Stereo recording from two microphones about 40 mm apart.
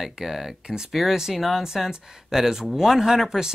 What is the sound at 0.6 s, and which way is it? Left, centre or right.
Speech, right.